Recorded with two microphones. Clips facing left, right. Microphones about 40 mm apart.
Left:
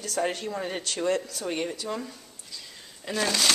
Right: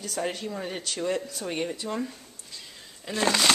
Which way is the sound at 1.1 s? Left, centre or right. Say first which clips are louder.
Left 2 dB; centre.